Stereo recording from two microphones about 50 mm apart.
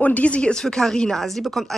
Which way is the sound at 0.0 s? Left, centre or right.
Left.